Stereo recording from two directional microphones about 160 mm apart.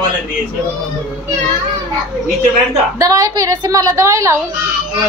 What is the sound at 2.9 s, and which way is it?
A child's voice, 20° right (ahead or behind).